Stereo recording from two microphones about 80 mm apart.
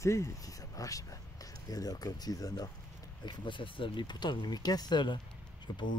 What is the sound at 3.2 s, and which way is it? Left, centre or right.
Speech, left.